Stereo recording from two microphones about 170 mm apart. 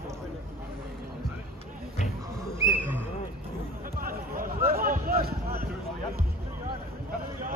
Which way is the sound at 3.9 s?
55° right (ahead or behind).